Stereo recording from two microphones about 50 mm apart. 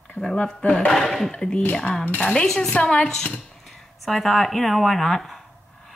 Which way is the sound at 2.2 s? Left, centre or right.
Centre.